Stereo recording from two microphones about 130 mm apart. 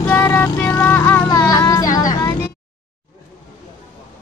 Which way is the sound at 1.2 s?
30° left (ahead or behind).